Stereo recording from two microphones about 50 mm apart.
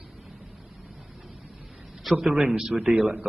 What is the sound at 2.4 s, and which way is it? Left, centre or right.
Speech, centre.